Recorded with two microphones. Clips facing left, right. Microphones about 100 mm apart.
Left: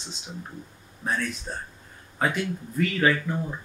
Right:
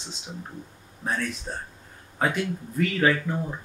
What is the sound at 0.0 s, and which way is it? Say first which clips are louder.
A man's voice: even; centre (ahead or behind).